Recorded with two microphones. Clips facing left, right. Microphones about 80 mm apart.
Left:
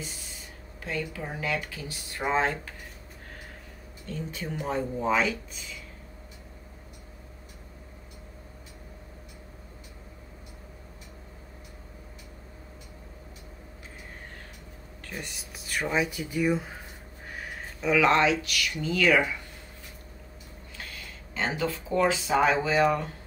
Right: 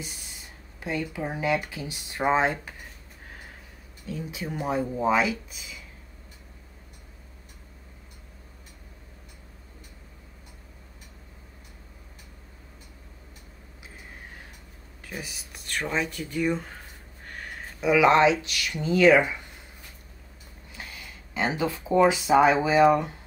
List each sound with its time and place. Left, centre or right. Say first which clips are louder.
0.8 s speech: right 3 dB; centre
4.0 s speech: right 1 dB; centre
15.0 s speech: right 1 dB; centre
17.3 s a sound: even; centre
17.7 s speech: right 3 dB; centre
20.7 s speech: right 1 dB; centre